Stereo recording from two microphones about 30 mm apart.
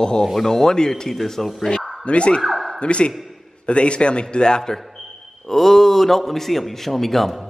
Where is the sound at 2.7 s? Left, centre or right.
Left.